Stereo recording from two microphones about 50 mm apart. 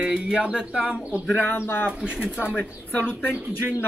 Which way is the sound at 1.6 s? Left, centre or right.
Left.